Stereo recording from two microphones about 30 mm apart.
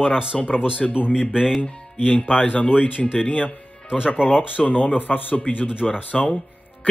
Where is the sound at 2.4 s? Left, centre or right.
Left.